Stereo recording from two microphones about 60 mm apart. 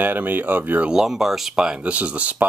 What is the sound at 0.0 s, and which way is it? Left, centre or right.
Speech, right.